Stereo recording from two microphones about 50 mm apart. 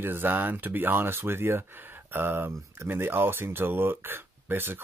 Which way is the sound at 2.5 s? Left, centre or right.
Right.